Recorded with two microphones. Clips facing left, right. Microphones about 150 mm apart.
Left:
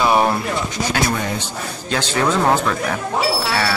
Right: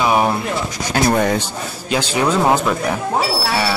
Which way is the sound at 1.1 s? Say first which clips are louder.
Right 7 dB; 60° right (ahead or behind).